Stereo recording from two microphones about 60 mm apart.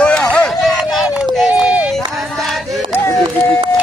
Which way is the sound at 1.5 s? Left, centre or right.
Right.